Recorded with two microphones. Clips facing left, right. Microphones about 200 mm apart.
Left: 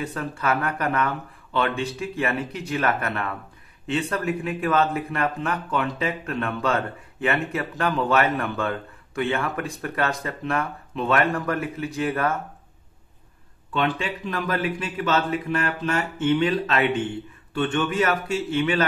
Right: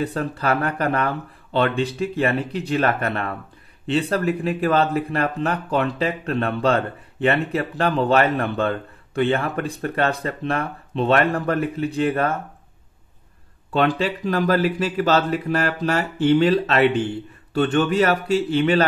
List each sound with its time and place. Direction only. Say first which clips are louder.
0.0 s speech: right 4 dB; 35° right (ahead or behind)
13.7 s speech: right 5 dB; 40° right (ahead or behind)
18.5 s speech: right 3 dB; 35° right (ahead or behind)